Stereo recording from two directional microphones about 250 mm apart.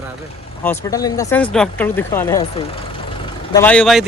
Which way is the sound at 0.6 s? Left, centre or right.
Centre.